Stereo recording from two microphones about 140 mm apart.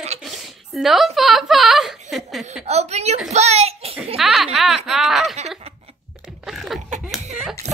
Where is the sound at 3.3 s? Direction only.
50° right (ahead or behind).